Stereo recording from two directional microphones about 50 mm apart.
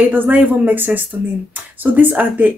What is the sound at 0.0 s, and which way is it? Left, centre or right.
Speech, right.